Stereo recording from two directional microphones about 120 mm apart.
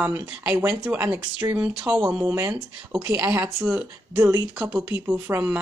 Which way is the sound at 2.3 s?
20° right (ahead or behind).